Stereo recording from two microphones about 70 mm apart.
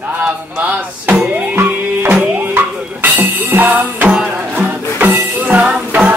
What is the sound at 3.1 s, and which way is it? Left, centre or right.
Music, right.